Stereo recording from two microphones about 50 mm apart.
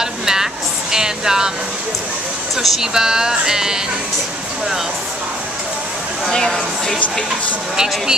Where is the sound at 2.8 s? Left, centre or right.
Centre.